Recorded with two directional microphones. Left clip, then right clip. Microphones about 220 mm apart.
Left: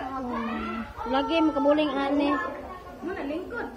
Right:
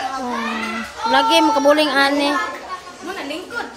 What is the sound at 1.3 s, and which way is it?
Speech, 35° right (ahead or behind).